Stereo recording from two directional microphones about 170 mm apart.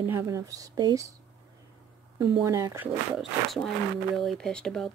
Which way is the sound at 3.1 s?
Centre (ahead or behind).